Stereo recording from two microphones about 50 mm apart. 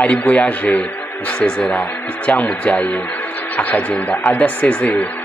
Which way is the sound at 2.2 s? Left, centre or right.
Left.